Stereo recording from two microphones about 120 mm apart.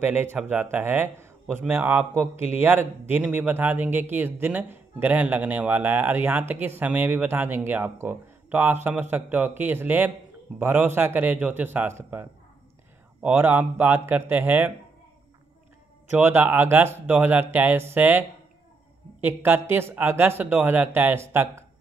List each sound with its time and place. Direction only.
0.0 s speech: 15° right (ahead or behind)
16.1 s speech: 15° right (ahead or behind)
19.2 s speech: 15° right (ahead or behind)